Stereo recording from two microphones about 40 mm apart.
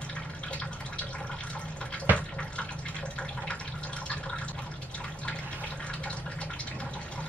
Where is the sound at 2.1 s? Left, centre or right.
Right.